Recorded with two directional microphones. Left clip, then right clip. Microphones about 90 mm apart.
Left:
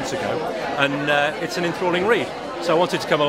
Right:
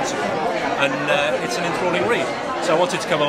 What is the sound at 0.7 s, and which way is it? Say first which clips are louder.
Speech: left 2 dB; 20° right (ahead or behind).